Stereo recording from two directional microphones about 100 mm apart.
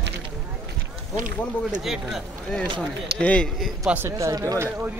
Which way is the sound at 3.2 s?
10° left (ahead or behind).